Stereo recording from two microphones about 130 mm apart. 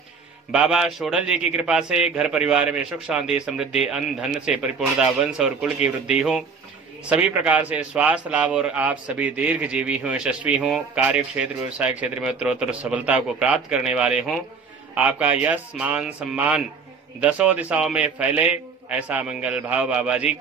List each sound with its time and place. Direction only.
0.5 s a man's voice: 5° right (ahead or behind)